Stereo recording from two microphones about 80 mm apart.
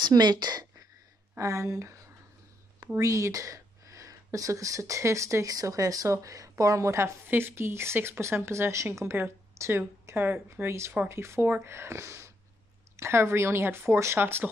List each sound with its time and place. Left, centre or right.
0.0 s a woman's voice: right
1.4 s speech: right
7.2 s speech: right